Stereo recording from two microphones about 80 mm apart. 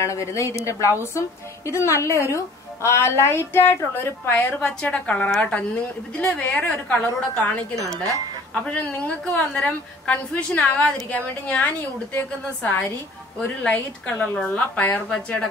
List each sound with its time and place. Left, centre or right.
0.0 s a woman's voice: left; by 7.6 s centre
8.6 s a woman's voice: centre